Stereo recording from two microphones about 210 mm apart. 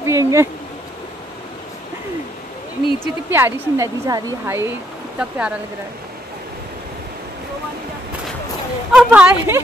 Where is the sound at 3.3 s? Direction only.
15° right (ahead or behind).